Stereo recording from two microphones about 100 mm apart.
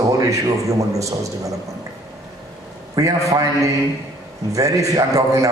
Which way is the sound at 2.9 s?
35° right (ahead or behind).